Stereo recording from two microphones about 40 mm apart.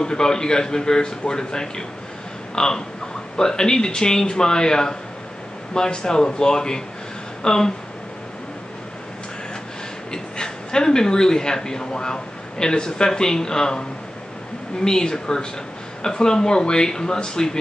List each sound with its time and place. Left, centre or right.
0.0 s a man's voice: centre
2.5 s crow: centre
3.3 s a man's voice: centre
10.1 s a man's voice: centre